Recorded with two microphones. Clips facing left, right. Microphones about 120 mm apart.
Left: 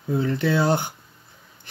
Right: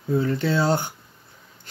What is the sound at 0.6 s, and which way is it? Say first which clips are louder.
Mantra: left 1 dB; 15° left (ahead or behind).